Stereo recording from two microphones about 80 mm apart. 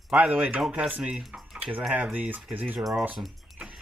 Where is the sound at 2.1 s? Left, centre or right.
Right.